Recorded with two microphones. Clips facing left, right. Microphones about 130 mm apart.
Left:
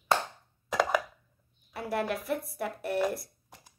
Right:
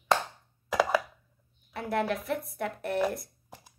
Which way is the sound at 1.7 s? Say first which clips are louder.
Right 2 dB; 5° left (ahead or behind).